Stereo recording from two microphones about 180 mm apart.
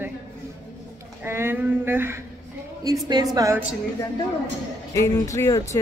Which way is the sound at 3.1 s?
20° right (ahead or behind).